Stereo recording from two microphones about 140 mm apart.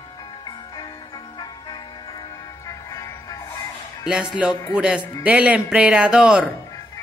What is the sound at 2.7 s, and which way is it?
Music, 25° left (ahead or behind).